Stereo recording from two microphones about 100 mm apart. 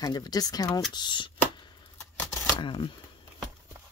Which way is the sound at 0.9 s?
50° left (ahead or behind).